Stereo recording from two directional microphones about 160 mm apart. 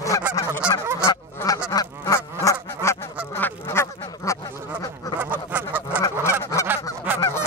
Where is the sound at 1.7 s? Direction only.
20° left (ahead or behind).